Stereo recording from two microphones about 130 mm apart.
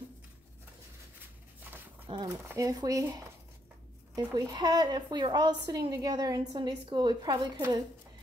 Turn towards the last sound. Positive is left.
turn(degrees=-25)  # may be behind; listen again after turning